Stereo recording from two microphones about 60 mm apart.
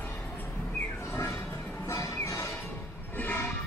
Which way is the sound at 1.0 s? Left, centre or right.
Left.